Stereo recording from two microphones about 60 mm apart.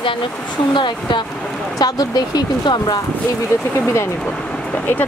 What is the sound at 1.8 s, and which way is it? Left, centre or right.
Speech, left.